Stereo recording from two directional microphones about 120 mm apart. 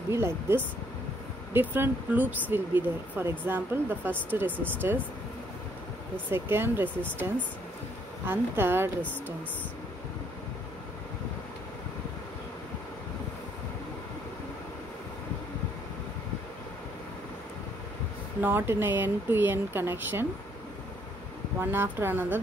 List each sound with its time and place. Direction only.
0.1 s speech: 20° right (ahead or behind)
6.3 s speech: 20° right (ahead or behind)
8.3 s speech: 20° right (ahead or behind)
18.4 s speech: 20° right (ahead or behind)
21.5 s speech: 20° right (ahead or behind)